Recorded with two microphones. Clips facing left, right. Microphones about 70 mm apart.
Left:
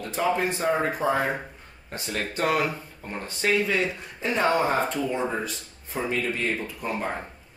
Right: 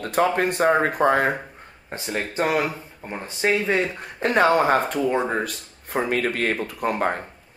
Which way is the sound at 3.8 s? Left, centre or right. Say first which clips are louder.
Right 4 dB; right.